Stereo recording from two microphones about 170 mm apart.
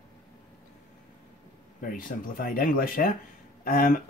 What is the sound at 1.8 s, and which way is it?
Speech, 55° left (ahead or behind).